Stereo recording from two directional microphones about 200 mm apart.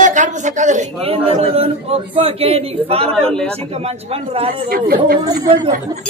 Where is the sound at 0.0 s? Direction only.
40° right (ahead or behind).